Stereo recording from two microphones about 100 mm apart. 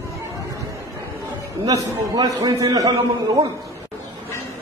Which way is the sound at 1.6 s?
40° right (ahead or behind).